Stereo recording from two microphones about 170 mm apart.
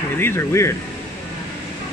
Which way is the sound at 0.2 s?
15° left (ahead or behind).